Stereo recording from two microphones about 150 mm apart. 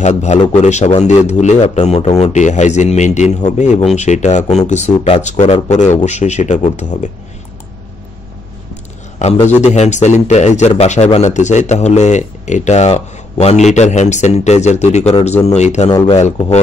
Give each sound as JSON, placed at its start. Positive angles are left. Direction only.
{"t": 0.0, "sound": "speech", "side_deg": 50}
{"t": 9.2, "sound": "speech", "side_deg": 50}